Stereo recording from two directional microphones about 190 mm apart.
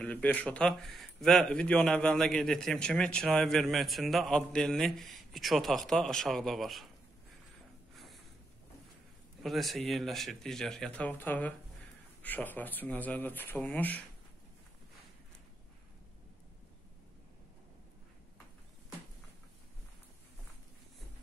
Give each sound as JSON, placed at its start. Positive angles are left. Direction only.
{"t": 0.0, "sound": "speech", "side_deg": 5}
{"t": 7.9, "sound": "a sound", "side_deg": 0}
{"t": 9.4, "sound": "speech", "side_deg": 0}